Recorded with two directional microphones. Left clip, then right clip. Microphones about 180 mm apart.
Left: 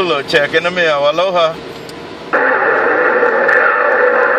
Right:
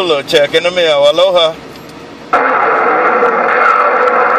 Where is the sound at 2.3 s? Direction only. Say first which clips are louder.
Right 2 dB; 35° right (ahead or behind).